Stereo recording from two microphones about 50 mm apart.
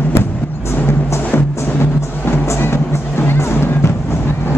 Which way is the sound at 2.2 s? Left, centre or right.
Left.